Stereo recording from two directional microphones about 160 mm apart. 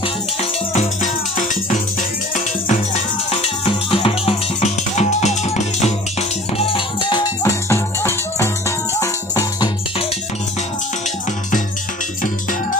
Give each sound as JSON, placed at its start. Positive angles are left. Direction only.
{"t": 0.0, "sound": "music", "side_deg": 40}
{"t": 6.7, "sound": "music", "side_deg": 25}
{"t": 7.7, "sound": "music", "side_deg": 15}